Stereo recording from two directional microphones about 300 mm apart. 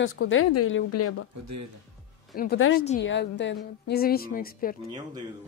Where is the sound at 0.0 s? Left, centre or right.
Left.